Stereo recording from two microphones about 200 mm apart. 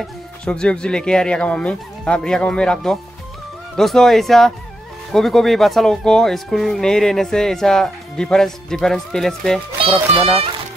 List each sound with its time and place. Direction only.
0.0 s speech: 5° left (ahead or behind)
10.1 s speech: 30° right (ahead or behind)